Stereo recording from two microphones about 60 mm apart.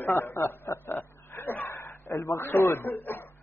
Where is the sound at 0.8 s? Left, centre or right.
Left.